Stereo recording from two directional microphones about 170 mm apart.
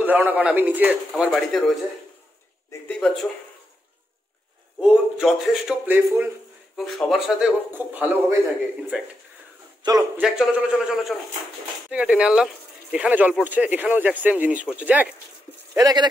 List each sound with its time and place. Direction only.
0.0 s speech: 10° right (ahead or behind)
2.9 s a man's voice: 5° left (ahead or behind)
4.7 s a man's voice: 5° right (ahead or behind)
10.1 s a man's voice: 5° right (ahead or behind)
15.7 s speech: 20° right (ahead or behind)